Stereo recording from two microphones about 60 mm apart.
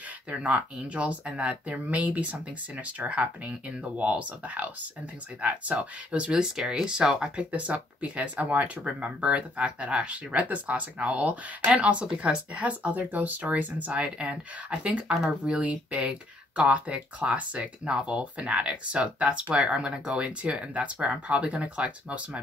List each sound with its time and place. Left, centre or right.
0.3 s speech: right